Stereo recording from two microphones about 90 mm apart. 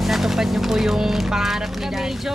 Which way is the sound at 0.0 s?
Centre (ahead or behind).